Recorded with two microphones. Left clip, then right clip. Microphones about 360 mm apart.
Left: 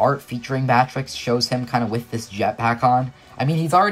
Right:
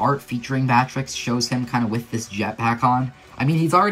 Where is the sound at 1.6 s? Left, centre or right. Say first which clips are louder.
Left 2 dB; centre.